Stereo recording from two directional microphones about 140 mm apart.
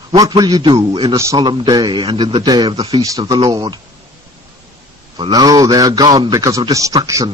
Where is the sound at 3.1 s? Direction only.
25° right (ahead or behind).